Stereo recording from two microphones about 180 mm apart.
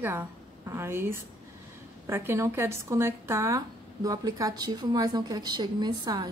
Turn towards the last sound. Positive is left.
turn(degrees=-25)  # may be behind; listen again after turning